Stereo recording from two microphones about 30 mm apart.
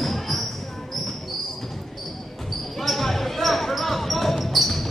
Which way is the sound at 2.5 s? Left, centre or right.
Centre.